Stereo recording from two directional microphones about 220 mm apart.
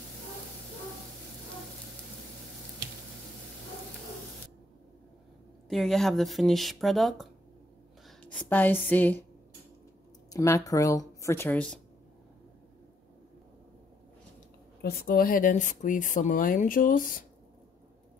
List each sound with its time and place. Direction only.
5.7 s speech: centre (ahead or behind)
10.3 s speech: 15° left (ahead or behind)
14.8 s speech: 45° left (ahead or behind)